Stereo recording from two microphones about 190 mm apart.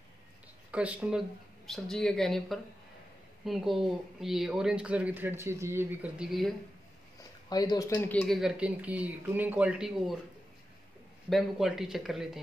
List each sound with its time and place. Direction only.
0.7 s speech: 5° right (ahead or behind)
7.4 s speech: 20° left (ahead or behind)
8.1 s speech: 5° left (ahead or behind)
11.2 s speech: centre (ahead or behind)